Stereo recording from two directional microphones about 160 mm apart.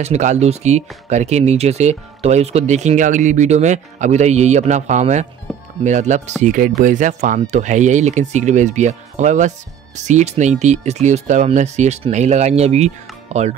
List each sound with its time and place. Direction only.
0.0 s speech: 45° right (ahead or behind)
5.5 s music: centre (ahead or behind)
5.9 s speech: 50° right (ahead or behind)